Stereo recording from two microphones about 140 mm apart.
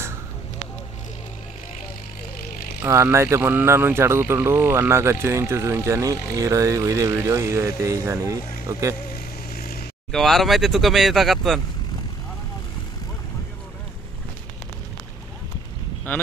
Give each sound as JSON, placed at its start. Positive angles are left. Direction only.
{"t": 2.8, "sound": "speech", "side_deg": -20}
{"t": 9.5, "sound": "vehicle", "side_deg": 90}
{"t": 10.1, "sound": "speech", "side_deg": 0}